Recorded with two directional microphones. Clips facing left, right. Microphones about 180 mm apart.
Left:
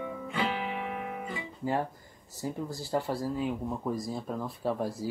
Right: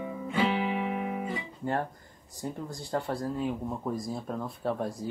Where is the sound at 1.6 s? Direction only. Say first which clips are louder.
Left 2 dB; 5° left (ahead or behind).